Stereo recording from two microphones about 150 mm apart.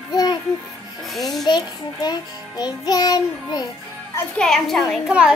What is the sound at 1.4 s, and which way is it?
Music, 30° left (ahead or behind).